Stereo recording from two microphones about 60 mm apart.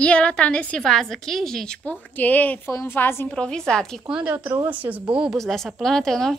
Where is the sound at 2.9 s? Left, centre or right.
Left.